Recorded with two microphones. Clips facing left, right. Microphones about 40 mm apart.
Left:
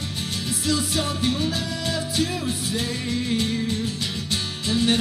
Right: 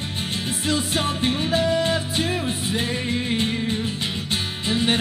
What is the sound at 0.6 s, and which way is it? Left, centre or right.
Music, right.